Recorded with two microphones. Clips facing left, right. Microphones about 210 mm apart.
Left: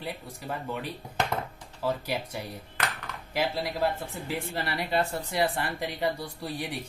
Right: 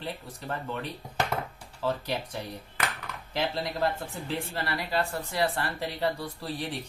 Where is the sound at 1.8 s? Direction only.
10° left (ahead or behind).